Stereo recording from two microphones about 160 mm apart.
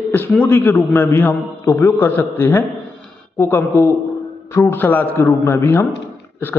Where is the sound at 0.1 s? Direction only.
10° left (ahead or behind).